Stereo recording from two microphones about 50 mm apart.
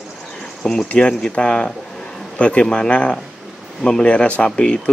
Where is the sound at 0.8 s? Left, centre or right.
Left.